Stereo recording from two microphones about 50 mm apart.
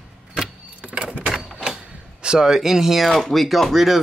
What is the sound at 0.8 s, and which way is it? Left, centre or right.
Door, centre.